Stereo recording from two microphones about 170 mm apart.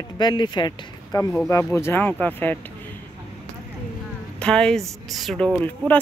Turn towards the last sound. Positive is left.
turn(degrees=0)  # may be behind; listen again after turning